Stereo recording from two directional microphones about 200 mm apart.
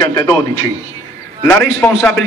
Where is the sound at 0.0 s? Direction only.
15° left (ahead or behind).